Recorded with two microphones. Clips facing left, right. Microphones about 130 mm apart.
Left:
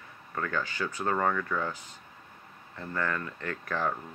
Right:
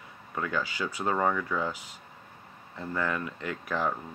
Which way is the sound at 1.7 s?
90° right.